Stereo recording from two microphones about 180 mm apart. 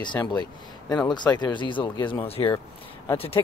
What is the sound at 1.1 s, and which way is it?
Speech, 25° left (ahead or behind).